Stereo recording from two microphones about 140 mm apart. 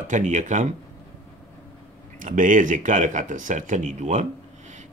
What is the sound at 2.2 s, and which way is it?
Speech, 70° right (ahead or behind).